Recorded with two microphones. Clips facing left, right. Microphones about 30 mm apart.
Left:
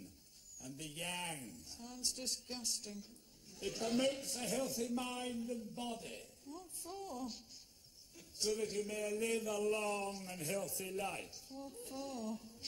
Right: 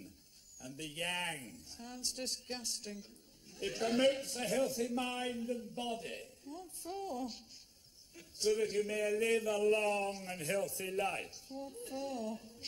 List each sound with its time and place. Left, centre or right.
0.6 s a man's voice: right